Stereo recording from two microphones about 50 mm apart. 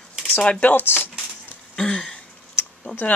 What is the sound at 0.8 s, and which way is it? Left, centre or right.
Speech, left.